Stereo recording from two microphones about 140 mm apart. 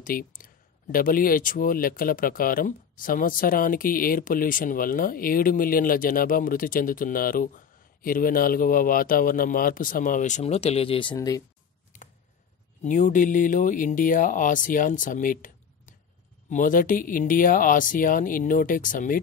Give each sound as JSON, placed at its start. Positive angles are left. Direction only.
{"t": 0.0, "sound": "a sound", "side_deg": 85}
{"t": 0.9, "sound": "speech", "side_deg": 90}
{"t": 11.1, "sound": "speech", "side_deg": 25}
{"t": 12.8, "sound": "speech", "side_deg": 65}